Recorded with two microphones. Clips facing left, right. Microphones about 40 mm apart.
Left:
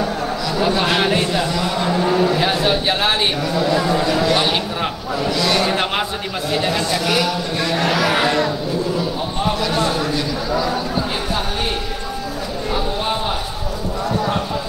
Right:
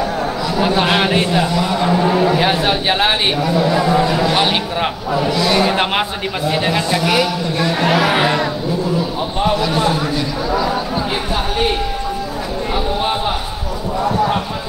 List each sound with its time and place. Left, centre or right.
0.6 s a man's voice: centre
5.4 s a man's voice: centre
9.6 s a man's voice: centre
12.7 s a man's voice: centre